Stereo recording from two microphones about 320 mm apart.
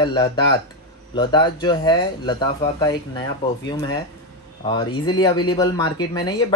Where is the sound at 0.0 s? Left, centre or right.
Centre.